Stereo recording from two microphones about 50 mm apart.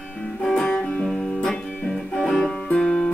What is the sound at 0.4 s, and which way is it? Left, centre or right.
Music, centre.